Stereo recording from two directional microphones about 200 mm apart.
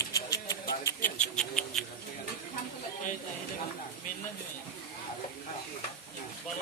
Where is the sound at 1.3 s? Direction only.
Centre (ahead or behind).